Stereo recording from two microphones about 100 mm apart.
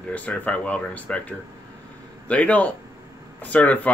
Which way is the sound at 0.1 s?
15° left (ahead or behind).